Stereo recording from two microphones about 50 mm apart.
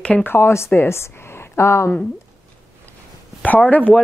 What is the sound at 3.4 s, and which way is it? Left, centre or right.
Speech, left.